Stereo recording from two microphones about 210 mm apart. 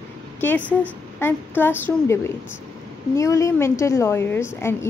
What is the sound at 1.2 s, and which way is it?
A woman's voice, 10° left (ahead or behind).